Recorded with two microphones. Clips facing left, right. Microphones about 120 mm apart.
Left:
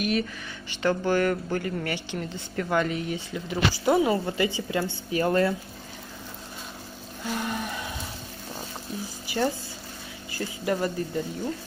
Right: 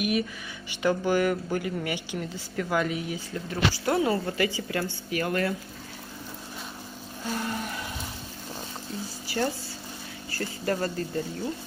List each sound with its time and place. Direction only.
0.0 s speech: 15° right (ahead or behind)
3.4 s speech: 15° left (ahead or behind)
7.3 s music: 20° left (ahead or behind)
9.3 s a sound: 20° left (ahead or behind)
10.3 s speech: 15° left (ahead or behind)